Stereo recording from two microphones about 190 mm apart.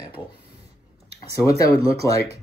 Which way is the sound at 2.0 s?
15° left (ahead or behind).